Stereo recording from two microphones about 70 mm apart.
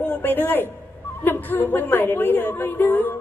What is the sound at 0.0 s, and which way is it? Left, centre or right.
A man's voice, left.